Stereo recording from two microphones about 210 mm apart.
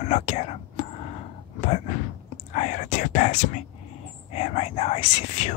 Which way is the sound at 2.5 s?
35° left (ahead or behind).